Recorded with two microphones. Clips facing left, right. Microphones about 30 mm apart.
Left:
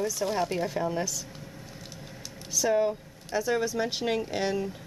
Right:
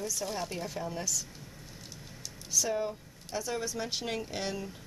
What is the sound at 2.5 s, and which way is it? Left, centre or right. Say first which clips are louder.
Speech: left 6 dB; centre.